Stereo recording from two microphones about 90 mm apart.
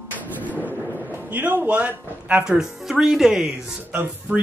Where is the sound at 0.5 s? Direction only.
20° right (ahead or behind).